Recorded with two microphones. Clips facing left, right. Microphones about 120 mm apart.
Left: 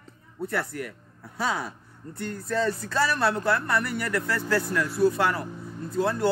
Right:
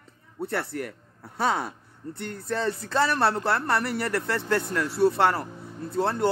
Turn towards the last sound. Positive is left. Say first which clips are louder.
# even
turn(degrees=-30)  # may be behind; listen again after turning